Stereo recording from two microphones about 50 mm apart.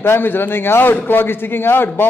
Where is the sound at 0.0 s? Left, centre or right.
Left.